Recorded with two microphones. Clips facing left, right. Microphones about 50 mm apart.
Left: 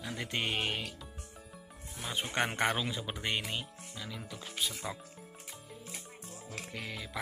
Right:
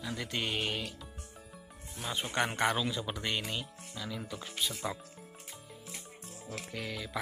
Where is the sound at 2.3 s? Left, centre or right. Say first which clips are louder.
Right 1 dB; left; by 4.2 s centre.